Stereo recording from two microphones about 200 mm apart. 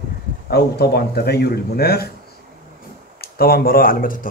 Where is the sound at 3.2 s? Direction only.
50° left (ahead or behind).